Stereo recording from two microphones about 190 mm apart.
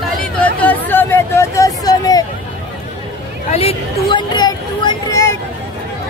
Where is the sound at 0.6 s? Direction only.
10° left (ahead or behind).